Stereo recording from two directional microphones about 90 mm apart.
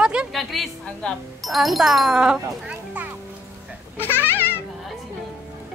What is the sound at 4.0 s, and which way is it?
Babbling, 25° left (ahead or behind).